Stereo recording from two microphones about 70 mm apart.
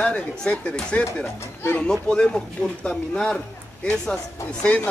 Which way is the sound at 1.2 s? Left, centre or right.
Left.